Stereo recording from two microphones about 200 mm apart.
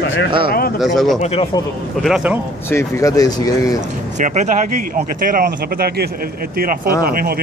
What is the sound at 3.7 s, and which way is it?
Speech, 40° right (ahead or behind).